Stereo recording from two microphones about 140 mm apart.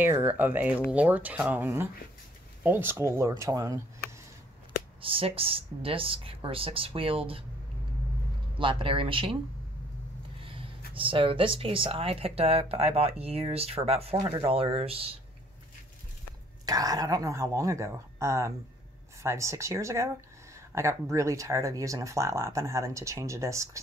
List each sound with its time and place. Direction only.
0.0 s speech: 15° right (ahead or behind)
5.0 s speech: 40° right (ahead or behind)
8.5 s speech: 40° right (ahead or behind)
11.0 s speech: 40° right (ahead or behind)
16.6 s speech: 25° right (ahead or behind)